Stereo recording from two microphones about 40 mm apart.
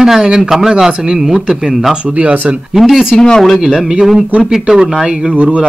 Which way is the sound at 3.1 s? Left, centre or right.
Centre.